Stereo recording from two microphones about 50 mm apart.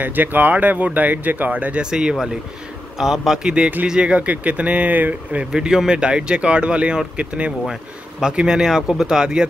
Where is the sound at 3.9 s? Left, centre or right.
Right.